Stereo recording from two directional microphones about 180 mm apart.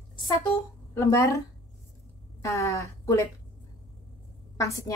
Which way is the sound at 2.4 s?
15° left (ahead or behind).